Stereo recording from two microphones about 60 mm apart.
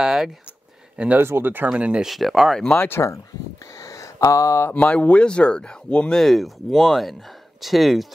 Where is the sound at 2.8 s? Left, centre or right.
Left.